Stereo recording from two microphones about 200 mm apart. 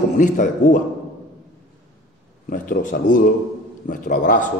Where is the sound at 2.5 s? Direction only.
40° left (ahead or behind).